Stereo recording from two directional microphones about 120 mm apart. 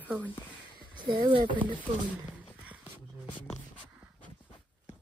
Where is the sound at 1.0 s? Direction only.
40° right (ahead or behind).